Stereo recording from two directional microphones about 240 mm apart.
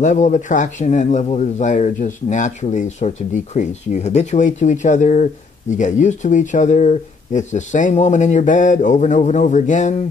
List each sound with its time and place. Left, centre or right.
0.0 s a man's voice: left